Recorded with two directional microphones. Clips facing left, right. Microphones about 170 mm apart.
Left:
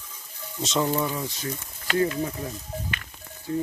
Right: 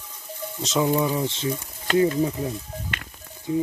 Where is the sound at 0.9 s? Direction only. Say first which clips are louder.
Right 4 dB; 15° right (ahead or behind).